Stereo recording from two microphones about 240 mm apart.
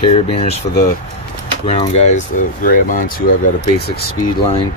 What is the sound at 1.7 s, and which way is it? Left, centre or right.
Speech, left.